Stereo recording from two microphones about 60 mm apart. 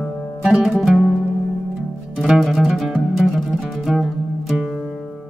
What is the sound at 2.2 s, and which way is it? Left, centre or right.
Music, centre.